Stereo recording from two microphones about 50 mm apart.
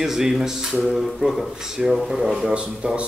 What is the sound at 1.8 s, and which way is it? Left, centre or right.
Speech, centre.